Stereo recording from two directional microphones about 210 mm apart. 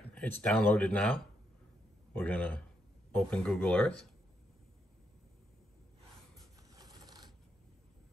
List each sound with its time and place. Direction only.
0.1 s speech: 5° left (ahead or behind)
6.3 s coin: 15° right (ahead or behind)